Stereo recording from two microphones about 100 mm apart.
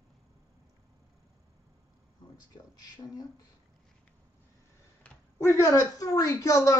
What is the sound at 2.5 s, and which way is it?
Speech, 40° left (ahead or behind).